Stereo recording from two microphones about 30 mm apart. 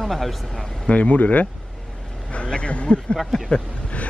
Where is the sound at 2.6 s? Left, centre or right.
Left.